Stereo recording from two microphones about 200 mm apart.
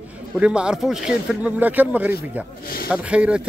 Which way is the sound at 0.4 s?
5° right (ahead or behind).